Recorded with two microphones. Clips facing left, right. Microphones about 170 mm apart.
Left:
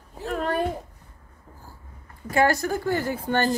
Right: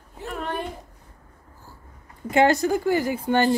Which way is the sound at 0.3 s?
45° left (ahead or behind).